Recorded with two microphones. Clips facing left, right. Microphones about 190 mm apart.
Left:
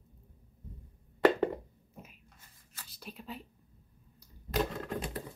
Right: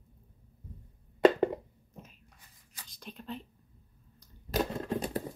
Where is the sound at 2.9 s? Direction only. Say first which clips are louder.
Right 3 dB; 5° left (ahead or behind).